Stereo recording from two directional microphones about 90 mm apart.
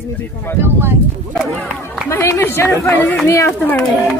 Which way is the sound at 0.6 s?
25° right (ahead or behind).